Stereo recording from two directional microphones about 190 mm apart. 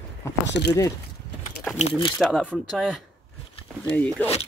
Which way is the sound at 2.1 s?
Centre (ahead or behind).